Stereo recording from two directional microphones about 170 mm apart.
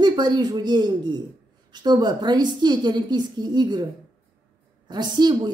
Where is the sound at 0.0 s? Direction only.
25° right (ahead or behind).